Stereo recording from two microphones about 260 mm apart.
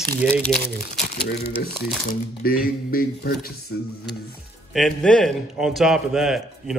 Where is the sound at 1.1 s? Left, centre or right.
Left.